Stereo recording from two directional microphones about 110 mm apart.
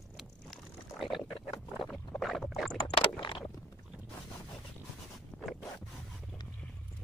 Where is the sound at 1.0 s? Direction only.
50° left (ahead or behind).